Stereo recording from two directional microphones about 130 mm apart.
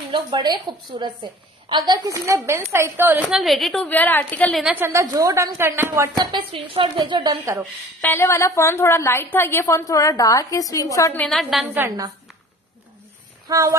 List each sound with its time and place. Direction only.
0.1 s a woman's voice: 35° right (ahead or behind); by 3.2 s 20° right (ahead or behind)
3.3 s a woman's voice: centre (ahead or behind)
3.8 s a woman's voice: 15° left (ahead or behind)
4.6 s a woman's voice: 15° right (ahead or behind)
6.1 s a woman's voice: 40° right (ahead or behind)
8.0 s a woman's voice: 20° left (ahead or behind)
11.1 s a woman's voice: 5° left (ahead or behind)
11.7 s a woman's voice: 20° right (ahead or behind)
13.5 s speech: 25° right (ahead or behind)